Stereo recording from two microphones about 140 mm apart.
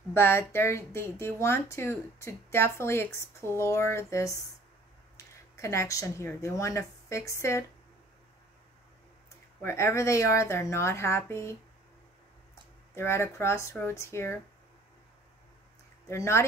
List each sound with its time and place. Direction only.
0.1 s speech: 15° left (ahead or behind)
9.6 s speech: 20° left (ahead or behind)
12.9 s speech: 20° left (ahead or behind)
16.1 s speech: 20° left (ahead or behind)